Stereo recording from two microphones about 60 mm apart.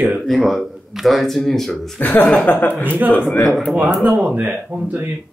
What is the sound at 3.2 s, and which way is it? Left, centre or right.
Speech, centre.